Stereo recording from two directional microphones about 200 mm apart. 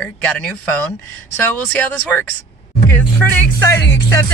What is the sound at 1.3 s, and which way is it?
Speech, 5° left (ahead or behind).